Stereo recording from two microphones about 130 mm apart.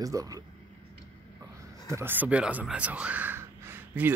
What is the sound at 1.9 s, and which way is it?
Speech, 20° right (ahead or behind).